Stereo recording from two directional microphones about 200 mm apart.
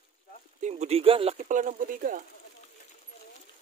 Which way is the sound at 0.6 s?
35° right (ahead or behind).